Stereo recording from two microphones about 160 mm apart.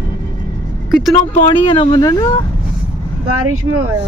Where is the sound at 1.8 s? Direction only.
25° left (ahead or behind).